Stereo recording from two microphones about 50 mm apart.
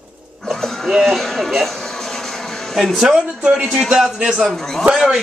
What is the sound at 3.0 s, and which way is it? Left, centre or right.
Speech, centre.